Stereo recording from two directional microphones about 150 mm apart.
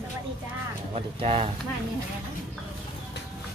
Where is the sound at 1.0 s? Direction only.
40° right (ahead or behind).